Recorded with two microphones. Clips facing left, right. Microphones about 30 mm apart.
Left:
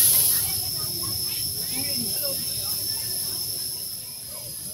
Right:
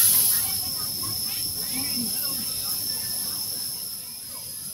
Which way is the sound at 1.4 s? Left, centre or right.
Centre.